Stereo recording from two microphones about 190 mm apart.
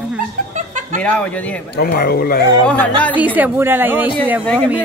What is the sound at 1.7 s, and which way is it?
Speech, 55° left (ahead or behind).